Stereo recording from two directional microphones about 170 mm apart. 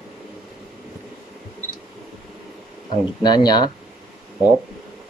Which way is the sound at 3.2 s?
25° left (ahead or behind).